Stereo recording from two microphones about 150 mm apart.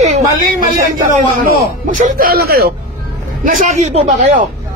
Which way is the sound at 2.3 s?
90° right.